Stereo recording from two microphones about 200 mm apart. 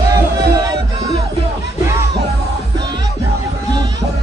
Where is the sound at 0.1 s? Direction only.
20° right (ahead or behind).